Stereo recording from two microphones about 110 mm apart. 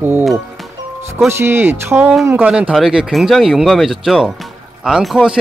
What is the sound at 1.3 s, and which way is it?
Speech, 20° right (ahead or behind).